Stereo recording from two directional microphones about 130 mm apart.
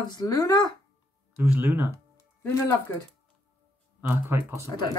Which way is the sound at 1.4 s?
15° right (ahead or behind).